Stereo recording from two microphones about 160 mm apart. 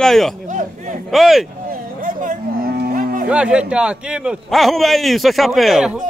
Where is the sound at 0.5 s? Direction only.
55° right (ahead or behind).